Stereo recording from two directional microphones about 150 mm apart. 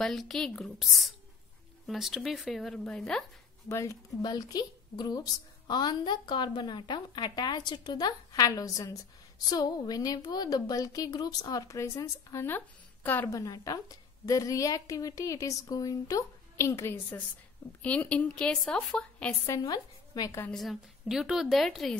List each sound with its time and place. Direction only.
0.0 s a woman's voice: centre (ahead or behind)
3.6 s a woman's voice: 20° left (ahead or behind)
19.4 s a woman's voice: 20° left (ahead or behind)
20.5 s a woman's voice: centre (ahead or behind)